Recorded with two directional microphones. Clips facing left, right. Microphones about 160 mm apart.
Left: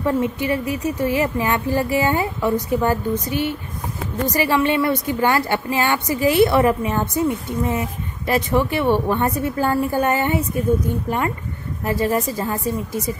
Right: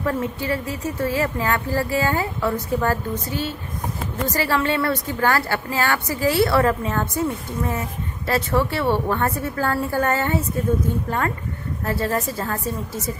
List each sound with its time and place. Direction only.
0.0 s a woman's voice: 20° left (ahead or behind)